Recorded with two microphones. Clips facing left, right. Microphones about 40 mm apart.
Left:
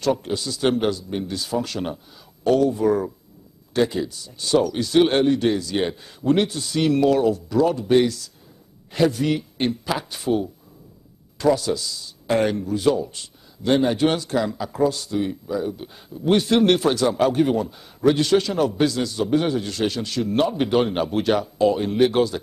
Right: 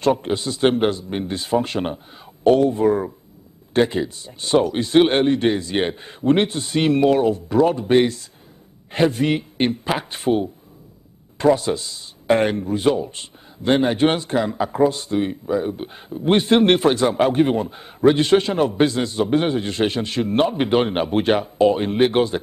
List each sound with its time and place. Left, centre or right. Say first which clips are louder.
0.0 s a man's voice: right 3 dB; right